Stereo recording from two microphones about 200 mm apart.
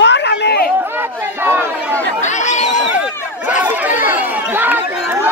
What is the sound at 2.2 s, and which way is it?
Chatter, 35° left (ahead or behind).